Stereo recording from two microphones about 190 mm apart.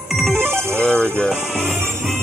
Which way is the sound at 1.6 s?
15° right (ahead or behind).